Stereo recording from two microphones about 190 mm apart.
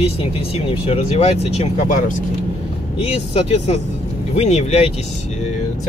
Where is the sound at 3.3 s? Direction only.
35° left (ahead or behind).